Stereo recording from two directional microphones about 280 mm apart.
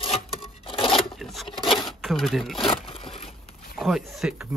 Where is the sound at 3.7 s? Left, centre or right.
Centre.